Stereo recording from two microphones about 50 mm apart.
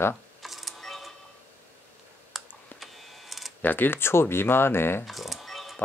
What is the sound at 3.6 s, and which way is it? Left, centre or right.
Speech, left.